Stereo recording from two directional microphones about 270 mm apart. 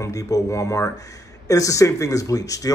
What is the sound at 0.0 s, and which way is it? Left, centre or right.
Speech, centre.